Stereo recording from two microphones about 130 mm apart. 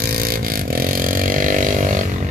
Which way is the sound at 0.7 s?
90° right.